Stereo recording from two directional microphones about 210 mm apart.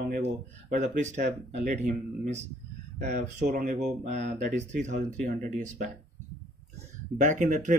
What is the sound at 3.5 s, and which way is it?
Speech, 45° right (ahead or behind).